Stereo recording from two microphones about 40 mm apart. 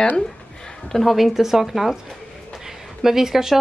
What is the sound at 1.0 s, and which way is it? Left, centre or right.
Speech, centre.